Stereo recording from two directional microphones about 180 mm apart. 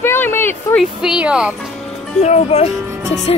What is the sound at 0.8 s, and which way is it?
Speech, 5° right (ahead or behind).